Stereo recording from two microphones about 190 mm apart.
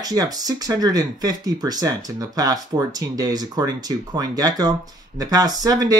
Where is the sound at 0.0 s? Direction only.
20° right (ahead or behind).